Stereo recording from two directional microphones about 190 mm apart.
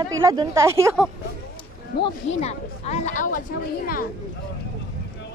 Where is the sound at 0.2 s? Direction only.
15° right (ahead or behind).